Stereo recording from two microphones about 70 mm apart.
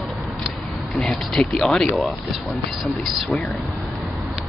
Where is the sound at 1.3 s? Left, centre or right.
Centre.